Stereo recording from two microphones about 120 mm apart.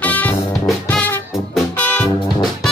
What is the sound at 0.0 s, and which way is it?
Music, 15° left (ahead or behind).